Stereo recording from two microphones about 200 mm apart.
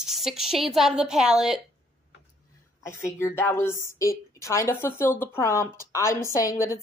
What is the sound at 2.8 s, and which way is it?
A woman's voice, 15° left (ahead or behind).